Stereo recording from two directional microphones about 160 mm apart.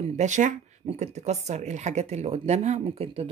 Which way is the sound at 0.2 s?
50° right (ahead or behind).